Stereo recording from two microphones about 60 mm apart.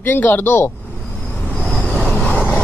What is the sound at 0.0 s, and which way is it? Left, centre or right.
Speech, left.